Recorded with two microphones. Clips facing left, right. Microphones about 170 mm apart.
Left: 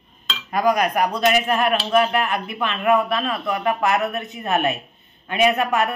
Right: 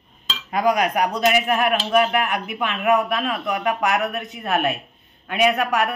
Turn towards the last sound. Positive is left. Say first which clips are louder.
# left 1 dB
turn(degrees=-5)  # may be behind; listen again after turning